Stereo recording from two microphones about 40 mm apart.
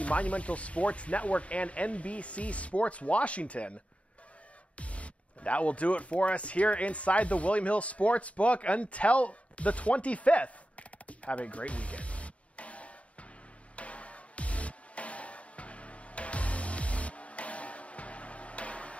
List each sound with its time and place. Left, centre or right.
0.0 s speech: left
4.7 s speech: left
13.7 s music: left